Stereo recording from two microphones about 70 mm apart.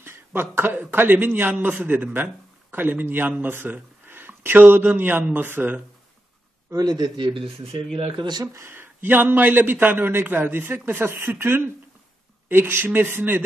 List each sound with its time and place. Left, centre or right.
0.0 s a man's voice: right
6.7 s speech: right
8.2 s speech: right
8.5 s a man's voice: right